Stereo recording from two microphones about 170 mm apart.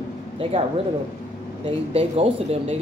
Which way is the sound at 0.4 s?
30° right (ahead or behind).